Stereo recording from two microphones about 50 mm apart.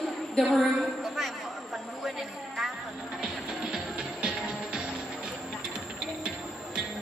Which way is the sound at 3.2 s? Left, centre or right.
Centre.